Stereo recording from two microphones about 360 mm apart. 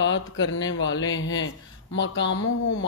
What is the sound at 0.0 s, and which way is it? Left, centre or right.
A woman's voice, left.